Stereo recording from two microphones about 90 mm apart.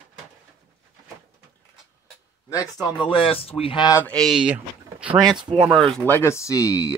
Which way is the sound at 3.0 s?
85° left.